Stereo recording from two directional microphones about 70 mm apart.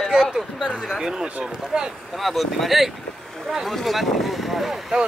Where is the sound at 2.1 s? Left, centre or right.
Centre.